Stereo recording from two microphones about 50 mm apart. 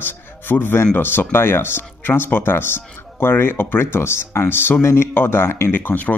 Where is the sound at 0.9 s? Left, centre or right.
Left.